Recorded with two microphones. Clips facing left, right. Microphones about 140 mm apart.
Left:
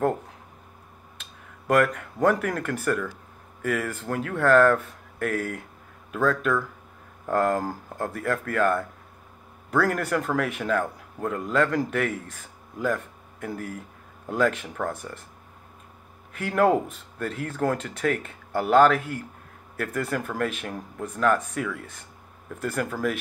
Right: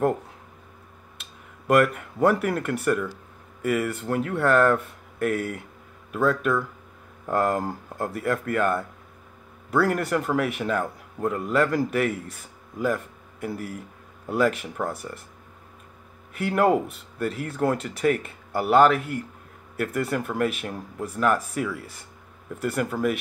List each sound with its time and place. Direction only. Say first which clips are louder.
1.8 s speech: right 1 dB; 10° right (ahead or behind)
16.3 s speech: even; 5° right (ahead or behind)